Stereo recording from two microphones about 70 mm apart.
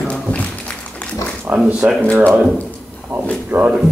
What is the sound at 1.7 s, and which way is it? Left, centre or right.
Speech, centre.